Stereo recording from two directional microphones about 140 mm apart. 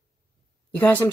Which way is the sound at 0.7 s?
15° left (ahead or behind).